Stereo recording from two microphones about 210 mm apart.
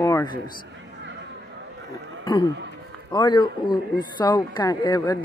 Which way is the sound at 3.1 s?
20° left (ahead or behind).